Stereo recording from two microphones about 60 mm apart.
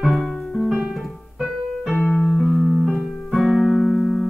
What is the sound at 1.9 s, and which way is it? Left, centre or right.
Piano, left.